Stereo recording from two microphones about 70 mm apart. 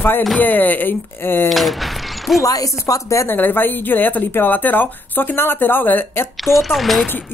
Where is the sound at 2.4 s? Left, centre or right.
Left.